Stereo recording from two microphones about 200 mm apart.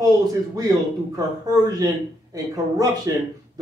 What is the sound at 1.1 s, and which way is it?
A man's voice, 20° right (ahead or behind).